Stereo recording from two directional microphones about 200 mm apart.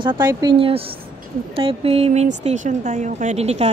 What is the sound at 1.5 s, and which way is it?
Speech, 30° right (ahead or behind).